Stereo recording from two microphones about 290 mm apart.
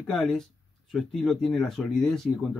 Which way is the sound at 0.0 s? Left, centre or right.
Centre.